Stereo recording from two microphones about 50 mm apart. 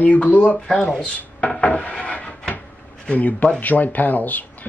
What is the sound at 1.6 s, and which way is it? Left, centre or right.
Rub, left.